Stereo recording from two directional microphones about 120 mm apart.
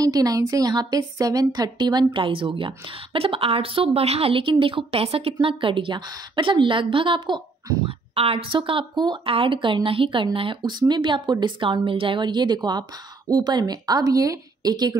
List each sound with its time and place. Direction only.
0.0 s a woman's voice: 30° right (ahead or behind)
8.1 s a woman's voice: 50° right (ahead or behind); by 15.0 s 35° right (ahead or behind)